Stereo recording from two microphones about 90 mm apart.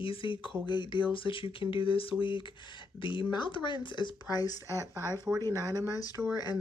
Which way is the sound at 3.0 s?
65° left (ahead or behind).